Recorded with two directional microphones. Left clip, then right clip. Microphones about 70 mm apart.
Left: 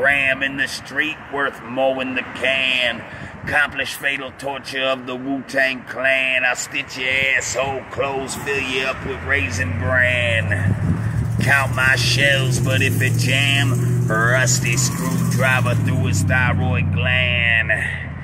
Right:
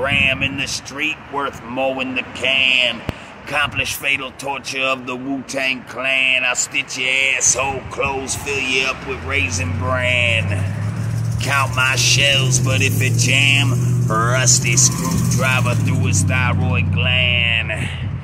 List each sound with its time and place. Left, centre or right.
0.0 s speech: right
5.5 s speech: right
14.1 s speech: right